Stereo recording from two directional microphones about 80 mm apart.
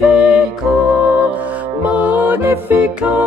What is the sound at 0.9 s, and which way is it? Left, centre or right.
Music, centre.